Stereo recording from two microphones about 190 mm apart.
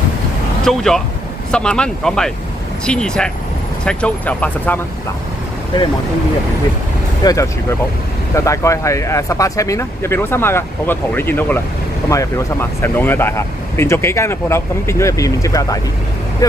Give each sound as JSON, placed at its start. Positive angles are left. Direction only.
{"t": 0.7, "sound": "speech", "side_deg": 0}
{"t": 7.2, "sound": "speech", "side_deg": 20}